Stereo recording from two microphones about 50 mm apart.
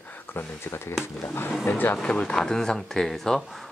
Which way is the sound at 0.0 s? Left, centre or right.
Left.